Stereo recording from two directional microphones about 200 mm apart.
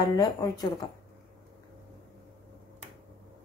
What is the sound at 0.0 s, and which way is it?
Speech, 20° left (ahead or behind).